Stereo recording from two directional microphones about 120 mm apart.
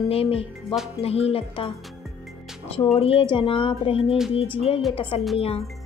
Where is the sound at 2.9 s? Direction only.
55° left (ahead or behind).